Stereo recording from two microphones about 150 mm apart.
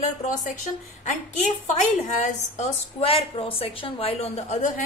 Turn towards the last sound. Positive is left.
turn(degrees=55)  # may be behind; listen again after turning